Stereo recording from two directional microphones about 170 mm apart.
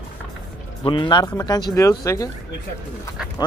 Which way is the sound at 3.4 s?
25° left (ahead or behind).